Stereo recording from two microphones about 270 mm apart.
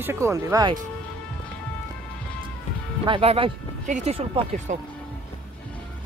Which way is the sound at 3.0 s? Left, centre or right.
Centre.